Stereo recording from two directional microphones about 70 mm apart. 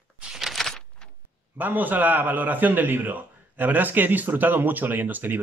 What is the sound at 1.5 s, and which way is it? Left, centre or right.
A man's voice, right.